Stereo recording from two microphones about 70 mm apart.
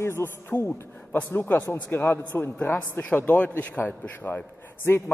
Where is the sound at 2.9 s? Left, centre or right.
Left.